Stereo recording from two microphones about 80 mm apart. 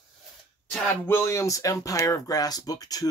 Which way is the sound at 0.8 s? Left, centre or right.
Left.